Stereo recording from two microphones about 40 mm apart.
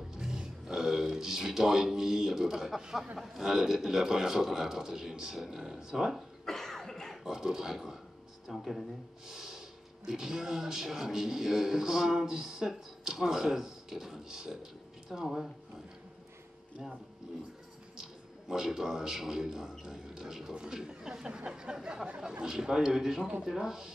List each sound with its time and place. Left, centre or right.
0.1 s a man's voice: centre
6.1 s cough: centre
7.2 s a man's voice: centre
9.3 s snort: centre
10.0 s a man's voice: centre
15.2 s speech: centre
18.5 s a man's voice: centre
21.3 s a sound: right
22.4 s a man's voice: centre